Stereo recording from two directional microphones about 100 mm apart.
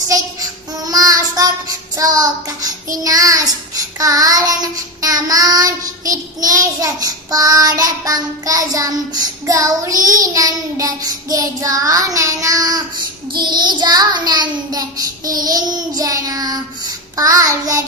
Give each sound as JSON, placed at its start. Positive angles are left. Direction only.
{"t": 0.1, "sound": "child singing", "side_deg": -40}